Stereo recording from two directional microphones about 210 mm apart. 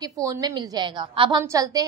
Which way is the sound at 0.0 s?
15° right (ahead or behind).